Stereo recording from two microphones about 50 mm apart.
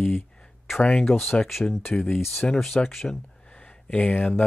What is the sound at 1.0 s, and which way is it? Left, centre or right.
Speech, left.